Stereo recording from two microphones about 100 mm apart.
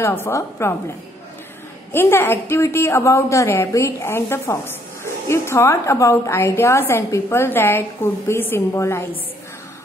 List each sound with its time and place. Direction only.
0.0 s a woman's voice: 25° left (ahead or behind)
1.9 s a woman's voice: 25° left (ahead or behind)